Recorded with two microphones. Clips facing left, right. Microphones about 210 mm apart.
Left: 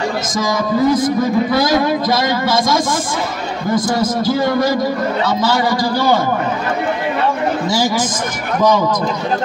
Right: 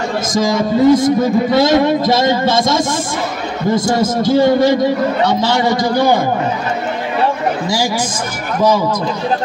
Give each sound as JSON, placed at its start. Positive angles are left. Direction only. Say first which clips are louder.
{"t": 0.4, "sound": "speech", "louder": "right 3 dB", "side_deg": -25}